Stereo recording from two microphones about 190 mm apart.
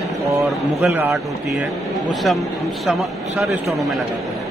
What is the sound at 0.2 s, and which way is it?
Speech, centre (ahead or behind).